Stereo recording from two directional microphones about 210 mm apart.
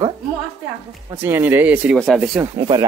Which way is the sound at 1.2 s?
10° right (ahead or behind).